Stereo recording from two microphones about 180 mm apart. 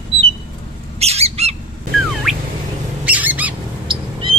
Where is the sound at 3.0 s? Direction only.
10° right (ahead or behind).